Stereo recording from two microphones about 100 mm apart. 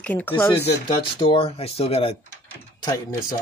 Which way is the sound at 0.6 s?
60° left (ahead or behind).